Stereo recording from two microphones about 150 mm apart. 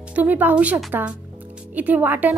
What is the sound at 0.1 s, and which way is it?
A woman's voice, 10° right (ahead or behind).